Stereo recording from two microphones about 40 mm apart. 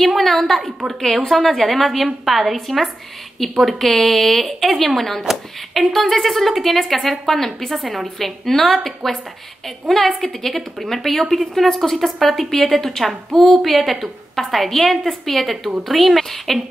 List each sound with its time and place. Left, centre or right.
0.1 s a woman's voice: centre